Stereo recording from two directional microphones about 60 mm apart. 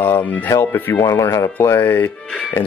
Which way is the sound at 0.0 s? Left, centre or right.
Left.